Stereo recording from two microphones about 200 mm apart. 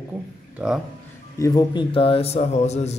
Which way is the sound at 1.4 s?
20° left (ahead or behind).